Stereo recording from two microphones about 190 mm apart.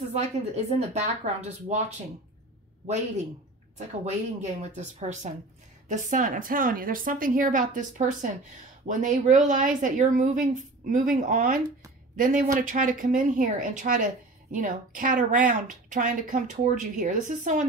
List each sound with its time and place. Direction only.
0.7 s speech: 35° right (ahead or behind)
3.7 s a woman's voice: 35° right (ahead or behind)